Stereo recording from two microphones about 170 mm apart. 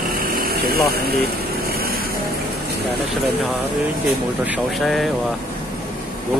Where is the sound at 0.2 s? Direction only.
55° right (ahead or behind).